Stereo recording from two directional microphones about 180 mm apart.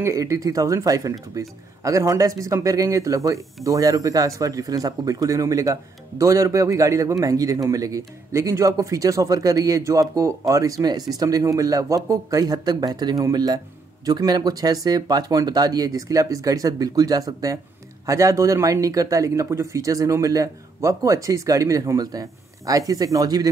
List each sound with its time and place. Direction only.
0.0 s speech: 15° right (ahead or behind)